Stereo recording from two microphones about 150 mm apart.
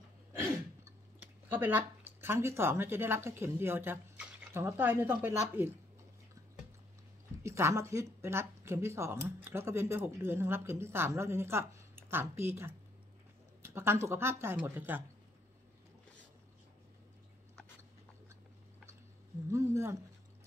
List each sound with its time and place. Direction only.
0.8 s speech: 15° right (ahead or behind)
7.4 s speech: 20° right (ahead or behind)
19.5 s speech: 20° right (ahead or behind)